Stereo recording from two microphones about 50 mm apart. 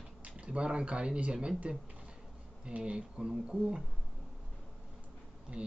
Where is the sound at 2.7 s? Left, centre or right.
Right.